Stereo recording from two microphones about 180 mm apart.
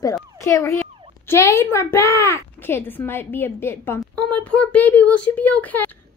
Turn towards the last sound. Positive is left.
turn(degrees=10)  # may be behind; listen again after turning